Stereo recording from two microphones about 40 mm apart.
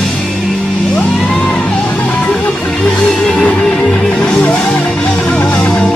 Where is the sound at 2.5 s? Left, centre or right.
Centre; by 5.4 s left.